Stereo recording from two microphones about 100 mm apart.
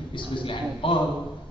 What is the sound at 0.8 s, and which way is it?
Speech, 60° left (ahead or behind).